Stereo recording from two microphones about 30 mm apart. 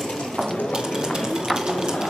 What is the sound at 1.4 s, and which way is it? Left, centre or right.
Bird, centre.